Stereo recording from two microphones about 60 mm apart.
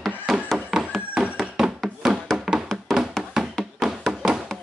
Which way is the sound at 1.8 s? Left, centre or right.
Centre.